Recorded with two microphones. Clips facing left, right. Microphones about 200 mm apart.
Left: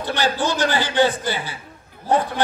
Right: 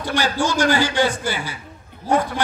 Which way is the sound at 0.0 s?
10° right (ahead or behind).